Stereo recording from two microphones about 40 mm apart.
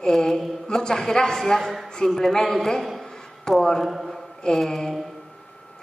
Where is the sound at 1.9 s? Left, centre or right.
Centre.